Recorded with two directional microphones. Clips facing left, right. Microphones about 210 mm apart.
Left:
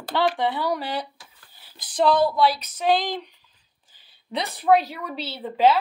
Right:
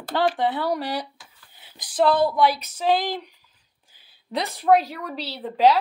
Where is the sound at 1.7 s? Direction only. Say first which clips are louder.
Even; 15° right (ahead or behind).